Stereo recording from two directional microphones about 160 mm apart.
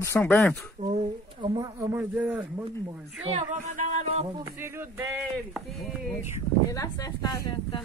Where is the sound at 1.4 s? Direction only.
25° right (ahead or behind).